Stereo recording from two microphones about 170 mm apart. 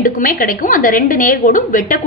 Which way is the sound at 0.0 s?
55° left (ahead or behind).